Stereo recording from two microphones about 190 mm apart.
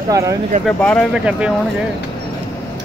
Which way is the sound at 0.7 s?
5° left (ahead or behind).